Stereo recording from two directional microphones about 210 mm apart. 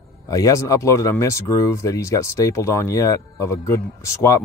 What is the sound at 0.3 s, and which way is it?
Speech, 15° left (ahead or behind).